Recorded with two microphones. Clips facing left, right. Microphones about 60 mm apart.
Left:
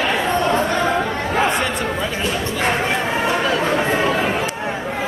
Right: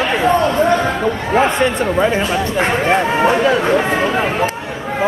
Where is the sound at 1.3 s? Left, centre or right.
Right.